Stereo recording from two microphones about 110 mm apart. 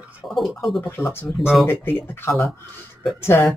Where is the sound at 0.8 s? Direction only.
25° left (ahead or behind).